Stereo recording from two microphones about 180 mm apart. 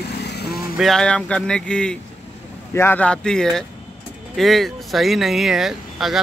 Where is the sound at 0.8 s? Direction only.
Centre (ahead or behind).